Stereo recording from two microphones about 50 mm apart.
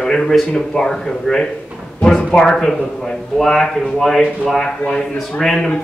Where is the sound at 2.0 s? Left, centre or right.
Left.